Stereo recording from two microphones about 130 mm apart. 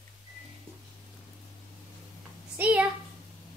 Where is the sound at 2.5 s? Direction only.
10° right (ahead or behind).